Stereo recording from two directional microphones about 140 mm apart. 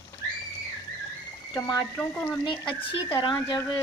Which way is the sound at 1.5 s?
30° left (ahead or behind).